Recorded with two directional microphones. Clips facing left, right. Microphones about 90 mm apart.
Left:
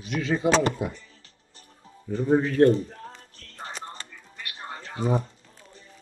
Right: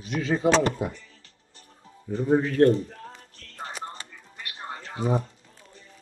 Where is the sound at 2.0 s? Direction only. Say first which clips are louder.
Even; 15° right (ahead or behind).